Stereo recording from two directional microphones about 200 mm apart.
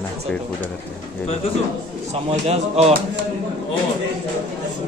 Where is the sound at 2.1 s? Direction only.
30° right (ahead or behind).